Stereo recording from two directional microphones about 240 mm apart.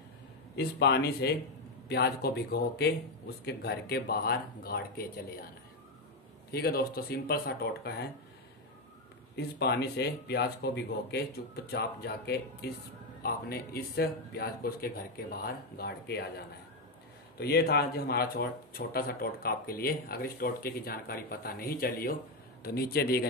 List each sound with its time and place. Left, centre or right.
0.6 s speech: left
6.5 s speech: left
9.3 s speech: left